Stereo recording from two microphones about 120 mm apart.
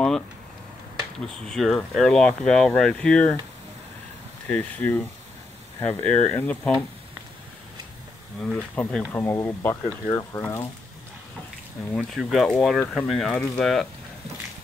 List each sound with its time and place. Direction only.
1.2 s speech: 5° left (ahead or behind)
4.5 s speech: 10° left (ahead or behind)
8.4 s speech: 5° left (ahead or behind)
9.1 s speech: 20° left (ahead or behind)
11.9 s speech: 5° left (ahead or behind)